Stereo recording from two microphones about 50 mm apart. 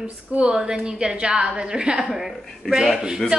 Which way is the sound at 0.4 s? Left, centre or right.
Centre.